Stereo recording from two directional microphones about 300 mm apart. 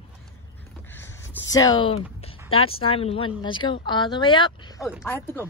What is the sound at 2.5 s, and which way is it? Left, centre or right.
A woman's voice, centre.